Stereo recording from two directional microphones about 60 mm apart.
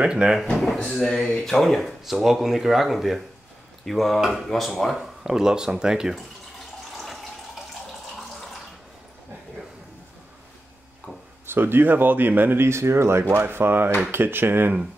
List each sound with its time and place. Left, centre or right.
0.0 s speech: centre
0.8 s speech: centre
7.0 s water tap: centre
11.4 s speech: right
12.6 s speech: right